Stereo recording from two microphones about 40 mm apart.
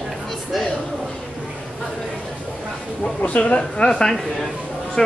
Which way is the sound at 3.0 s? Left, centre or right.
Left.